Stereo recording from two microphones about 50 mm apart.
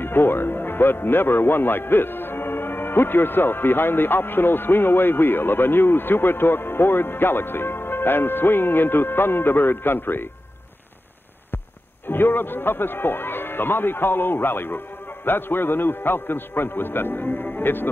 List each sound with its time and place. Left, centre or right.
0.0 s a man's voice: left
12.1 s a man's voice: left